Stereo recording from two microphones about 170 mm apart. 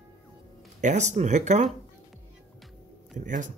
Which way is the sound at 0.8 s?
45° right (ahead or behind).